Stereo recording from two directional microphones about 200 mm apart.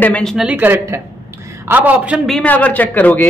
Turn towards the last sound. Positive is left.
turn(degrees=10)  # may be behind; listen again after turning